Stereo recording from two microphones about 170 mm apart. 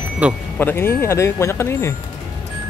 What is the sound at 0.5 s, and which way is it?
Speech, 15° left (ahead or behind).